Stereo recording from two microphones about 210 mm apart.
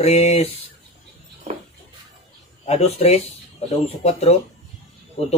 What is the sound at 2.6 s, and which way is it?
A man's voice, 30° left (ahead or behind).